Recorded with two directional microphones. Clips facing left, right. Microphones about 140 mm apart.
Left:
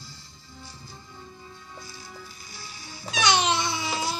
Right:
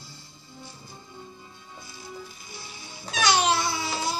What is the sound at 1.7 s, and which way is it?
Music, 20° right (ahead or behind).